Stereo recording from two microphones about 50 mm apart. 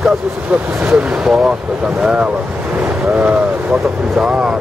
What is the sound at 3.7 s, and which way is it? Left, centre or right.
Speech, centre.